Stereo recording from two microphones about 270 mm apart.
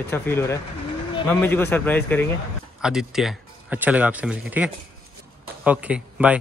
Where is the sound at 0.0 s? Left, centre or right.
Centre.